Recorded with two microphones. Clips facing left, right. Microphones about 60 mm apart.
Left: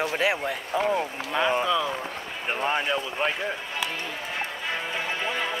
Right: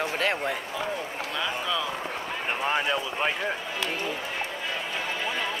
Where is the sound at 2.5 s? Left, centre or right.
Centre.